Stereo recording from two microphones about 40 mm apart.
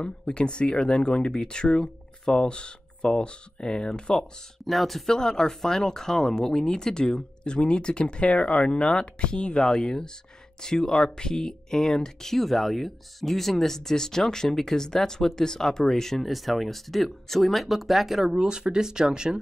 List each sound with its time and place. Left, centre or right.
0.0 s speech: left
4.6 s speech: centre
5.1 s speech: centre
9.8 s speech: centre